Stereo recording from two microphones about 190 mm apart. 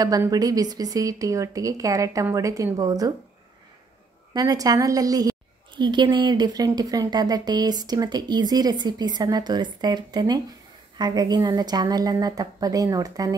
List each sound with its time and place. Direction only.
0.0 s speech: 20° right (ahead or behind)
4.3 s a woman's voice: 20° right (ahead or behind)